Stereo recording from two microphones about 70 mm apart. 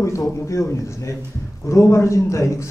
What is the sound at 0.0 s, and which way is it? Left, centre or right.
A man's voice, left.